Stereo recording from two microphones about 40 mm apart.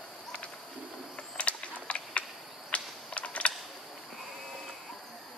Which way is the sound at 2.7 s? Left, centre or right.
Left.